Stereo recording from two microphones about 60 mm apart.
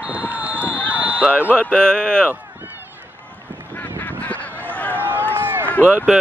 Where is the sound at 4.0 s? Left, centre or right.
Left.